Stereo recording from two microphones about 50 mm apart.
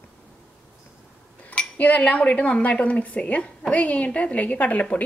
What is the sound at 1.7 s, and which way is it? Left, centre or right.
A woman's voice, left.